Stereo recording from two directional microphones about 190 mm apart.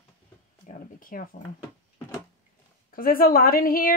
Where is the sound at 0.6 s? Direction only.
45° left (ahead or behind).